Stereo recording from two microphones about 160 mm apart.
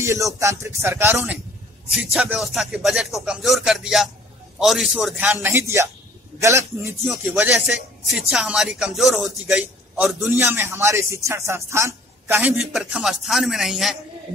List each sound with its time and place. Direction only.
0.0 s a man's voice: 20° right (ahead or behind); by 13.9 s centre (ahead or behind)